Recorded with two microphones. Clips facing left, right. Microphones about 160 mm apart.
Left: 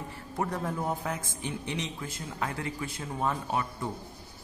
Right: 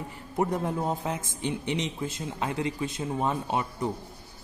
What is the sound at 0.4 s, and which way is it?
Speech, 20° right (ahead or behind).